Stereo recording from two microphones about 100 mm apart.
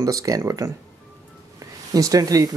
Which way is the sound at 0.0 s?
35° right (ahead or behind).